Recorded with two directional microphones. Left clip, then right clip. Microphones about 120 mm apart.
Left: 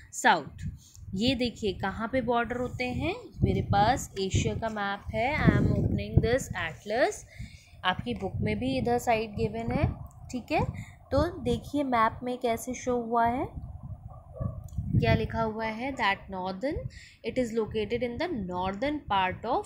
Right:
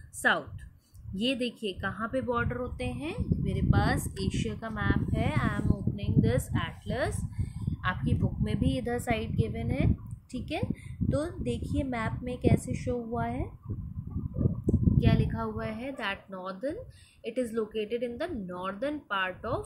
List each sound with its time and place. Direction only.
1.1 s a woman's voice: 45° left (ahead or behind)
2.8 s a woman's voice: 20° left (ahead or behind)
5.9 s a woman's voice: 45° left (ahead or behind)
8.6 s a woman's voice: 25° left (ahead or behind)
10.3 s a woman's voice: 30° left (ahead or behind)
15.0 s a woman's voice: 45° left (ahead or behind)